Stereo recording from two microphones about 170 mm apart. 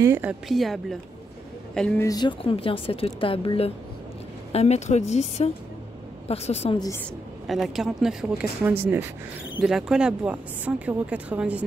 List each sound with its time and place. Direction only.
0.0 s speech: 10° right (ahead or behind); by 2.0 s 5° left (ahead or behind)
2.0 s speech: 25° left (ahead or behind)
7.4 s speech: centre (ahead or behind)